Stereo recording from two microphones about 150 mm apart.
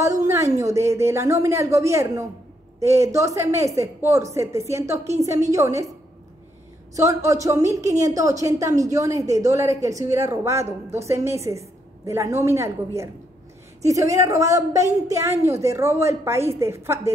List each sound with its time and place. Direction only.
0.0 s a woman's voice: 20° right (ahead or behind)
7.2 s a woman's voice: 20° right (ahead or behind)